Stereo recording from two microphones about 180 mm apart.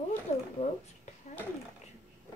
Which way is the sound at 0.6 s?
40° left (ahead or behind).